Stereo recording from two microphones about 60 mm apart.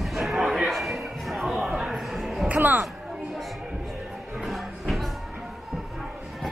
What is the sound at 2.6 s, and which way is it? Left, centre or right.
Music, right.